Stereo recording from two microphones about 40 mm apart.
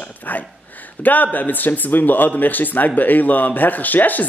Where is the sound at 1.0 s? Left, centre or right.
Left.